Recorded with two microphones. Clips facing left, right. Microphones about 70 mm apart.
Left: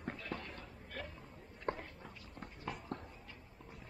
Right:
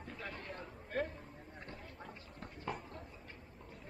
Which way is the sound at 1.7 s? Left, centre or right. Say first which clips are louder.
Left 15 dB; left.